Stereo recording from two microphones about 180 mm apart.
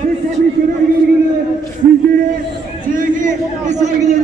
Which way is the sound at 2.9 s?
45° right (ahead or behind).